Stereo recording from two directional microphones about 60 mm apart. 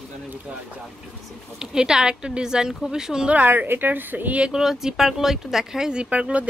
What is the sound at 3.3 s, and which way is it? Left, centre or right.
A woman's voice, right.